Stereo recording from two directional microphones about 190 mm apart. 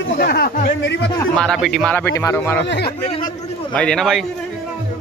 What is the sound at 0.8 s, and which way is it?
Speech, 70° left (ahead or behind).